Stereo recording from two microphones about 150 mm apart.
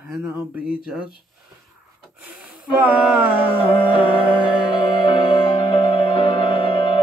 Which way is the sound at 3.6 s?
35° left (ahead or behind).